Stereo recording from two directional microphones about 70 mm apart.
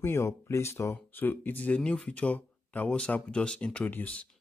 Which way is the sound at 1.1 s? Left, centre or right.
Left.